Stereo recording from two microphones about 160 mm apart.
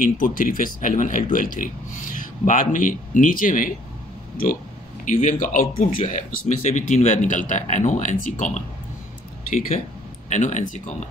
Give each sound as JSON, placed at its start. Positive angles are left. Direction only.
{"t": 0.0, "sound": "a man's voice", "side_deg": 60}
{"t": 5.0, "sound": "speech", "side_deg": 55}
{"t": 10.3, "sound": "speech", "side_deg": 50}